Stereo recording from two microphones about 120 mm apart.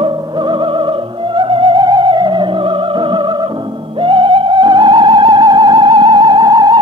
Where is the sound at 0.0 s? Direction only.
40° right (ahead or behind).